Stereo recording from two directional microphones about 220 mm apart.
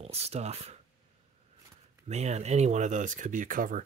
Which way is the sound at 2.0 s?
30° right (ahead or behind).